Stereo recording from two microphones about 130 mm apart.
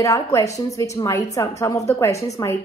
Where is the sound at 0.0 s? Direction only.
25° left (ahead or behind).